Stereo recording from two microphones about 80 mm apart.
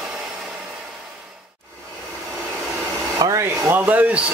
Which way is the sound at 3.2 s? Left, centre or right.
Right.